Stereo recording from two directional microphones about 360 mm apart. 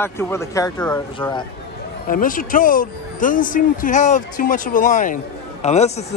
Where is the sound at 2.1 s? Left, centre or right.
Left.